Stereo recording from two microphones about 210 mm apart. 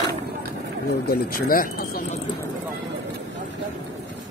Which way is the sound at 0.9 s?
45° left (ahead or behind).